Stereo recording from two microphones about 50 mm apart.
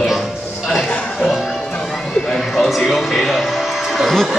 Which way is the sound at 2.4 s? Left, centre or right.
Centre.